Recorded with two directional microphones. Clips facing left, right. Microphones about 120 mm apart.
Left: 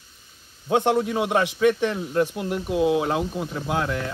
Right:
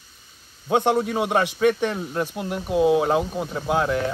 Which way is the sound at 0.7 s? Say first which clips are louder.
Even; 25° right (ahead or behind).